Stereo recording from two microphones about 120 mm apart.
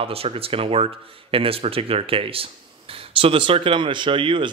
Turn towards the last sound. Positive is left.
turn(degrees=-45)  # may be behind; listen again after turning